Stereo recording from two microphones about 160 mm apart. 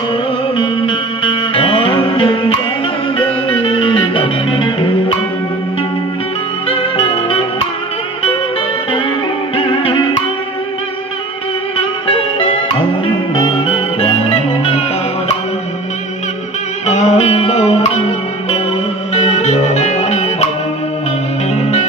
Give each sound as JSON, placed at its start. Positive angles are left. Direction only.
{"t": 0.6, "sound": "music", "side_deg": 35}
{"t": 7.0, "sound": "music", "side_deg": 35}
{"t": 9.6, "sound": "music", "side_deg": 35}
{"t": 12.1, "sound": "music", "side_deg": 35}
{"t": 16.8, "sound": "music", "side_deg": 45}
{"t": 19.1, "sound": "music", "side_deg": 45}
{"t": 21.5, "sound": "music", "side_deg": 45}